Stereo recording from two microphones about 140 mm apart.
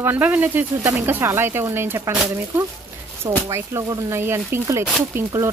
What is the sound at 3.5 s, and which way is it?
Speech, 20° right (ahead or behind).